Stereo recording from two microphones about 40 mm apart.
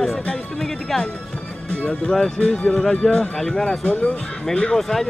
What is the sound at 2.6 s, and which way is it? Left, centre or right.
Speech, left.